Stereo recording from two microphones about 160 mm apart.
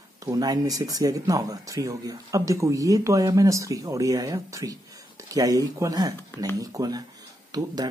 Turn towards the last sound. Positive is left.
turn(degrees=-25)  # may be behind; listen again after turning